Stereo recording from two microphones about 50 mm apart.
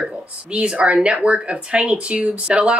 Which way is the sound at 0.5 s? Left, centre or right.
Right.